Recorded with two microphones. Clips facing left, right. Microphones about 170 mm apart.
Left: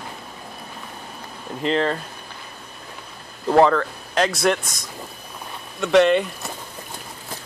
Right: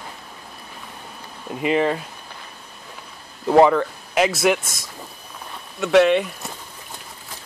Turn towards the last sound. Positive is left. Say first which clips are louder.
# even
turn(degrees=0)  # may be behind; listen again after turning